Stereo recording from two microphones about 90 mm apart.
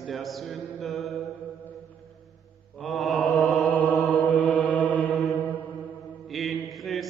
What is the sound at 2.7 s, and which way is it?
Mantra, centre (ahead or behind).